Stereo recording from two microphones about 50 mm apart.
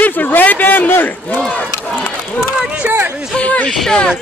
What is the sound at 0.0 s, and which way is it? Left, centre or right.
Speech, left.